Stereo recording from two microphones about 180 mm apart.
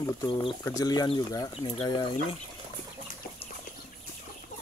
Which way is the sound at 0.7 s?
20° left (ahead or behind).